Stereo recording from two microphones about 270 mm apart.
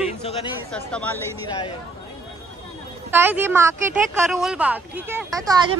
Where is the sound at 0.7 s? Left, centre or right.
Centre.